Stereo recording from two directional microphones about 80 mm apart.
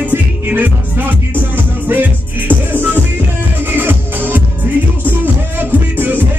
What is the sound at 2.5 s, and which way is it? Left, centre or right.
Music, right.